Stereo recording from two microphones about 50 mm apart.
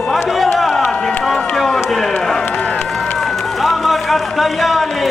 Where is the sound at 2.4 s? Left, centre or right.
Left.